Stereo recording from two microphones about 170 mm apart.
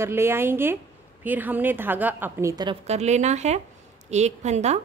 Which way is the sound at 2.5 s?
25° right (ahead or behind).